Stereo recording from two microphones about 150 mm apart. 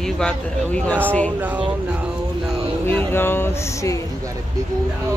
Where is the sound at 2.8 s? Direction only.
15° left (ahead or behind).